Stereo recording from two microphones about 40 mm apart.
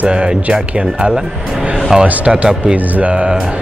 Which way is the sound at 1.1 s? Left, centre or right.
Centre.